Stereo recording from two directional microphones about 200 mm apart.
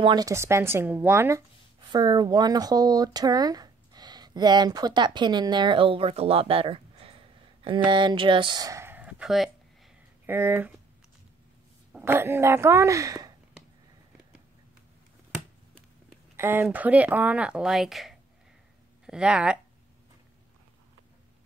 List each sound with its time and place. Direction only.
0.0 s speech: 20° right (ahead or behind)
11.9 s speech: 10° right (ahead or behind)
16.3 s speech: 10° right (ahead or behind)